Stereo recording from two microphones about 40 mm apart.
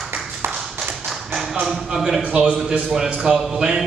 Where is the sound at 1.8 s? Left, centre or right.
Centre.